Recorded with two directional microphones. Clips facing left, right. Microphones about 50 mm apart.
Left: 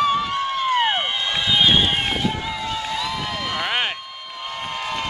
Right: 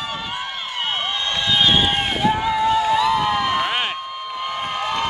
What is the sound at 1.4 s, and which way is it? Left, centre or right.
Run, centre.